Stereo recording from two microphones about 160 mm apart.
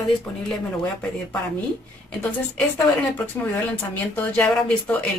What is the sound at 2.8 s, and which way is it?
Speech, 20° left (ahead or behind).